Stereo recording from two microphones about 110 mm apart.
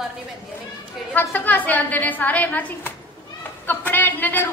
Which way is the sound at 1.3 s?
15° left (ahead or behind).